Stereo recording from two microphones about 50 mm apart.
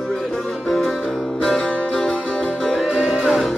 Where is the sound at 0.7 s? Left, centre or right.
Centre; by 2.5 s left.